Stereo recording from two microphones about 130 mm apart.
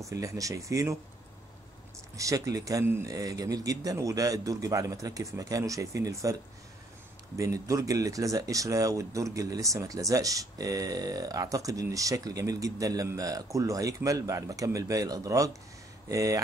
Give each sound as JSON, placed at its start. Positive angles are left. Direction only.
{"t": 0.1, "sound": "speech", "side_deg": -25}
{"t": 2.1, "sound": "speech", "side_deg": -25}
{"t": 7.3, "sound": "speech", "side_deg": -25}